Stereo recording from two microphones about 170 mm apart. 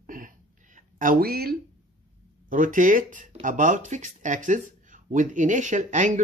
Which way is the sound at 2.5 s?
50° right (ahead or behind).